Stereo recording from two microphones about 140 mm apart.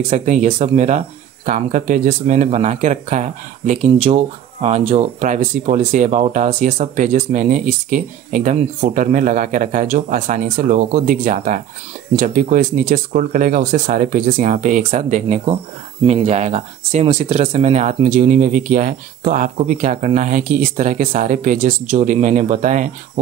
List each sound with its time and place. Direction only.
0.1 s speech: 55° right (ahead or behind)